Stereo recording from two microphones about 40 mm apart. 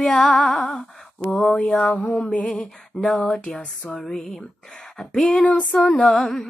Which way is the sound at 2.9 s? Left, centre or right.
Left.